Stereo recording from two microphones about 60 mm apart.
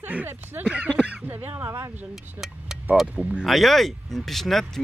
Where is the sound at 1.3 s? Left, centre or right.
Right.